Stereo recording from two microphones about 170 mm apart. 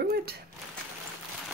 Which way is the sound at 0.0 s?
65° right (ahead or behind).